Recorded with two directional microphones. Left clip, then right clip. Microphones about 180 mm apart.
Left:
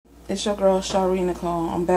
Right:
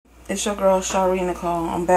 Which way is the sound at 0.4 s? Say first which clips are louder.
Right 1 dB; 10° left (ahead or behind).